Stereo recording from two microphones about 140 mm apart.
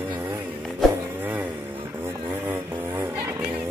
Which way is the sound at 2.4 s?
15° right (ahead or behind).